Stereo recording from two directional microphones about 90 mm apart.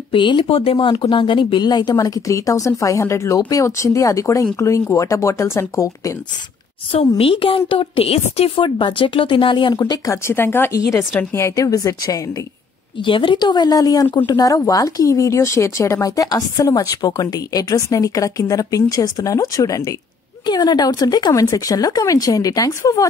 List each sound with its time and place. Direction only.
0.1 s speech: 65° left (ahead or behind); by 6.1 s 35° left (ahead or behind)
7.2 s a woman's voice: 90° left; by 9.8 s 65° left (ahead or behind)
9.8 s speech: 45° left (ahead or behind)
10.2 s speech: 25° left (ahead or behind)
13.0 s speech: 70° left (ahead or behind); by 19.9 s 40° left (ahead or behind)
20.4 s speech: 50° left (ahead or behind)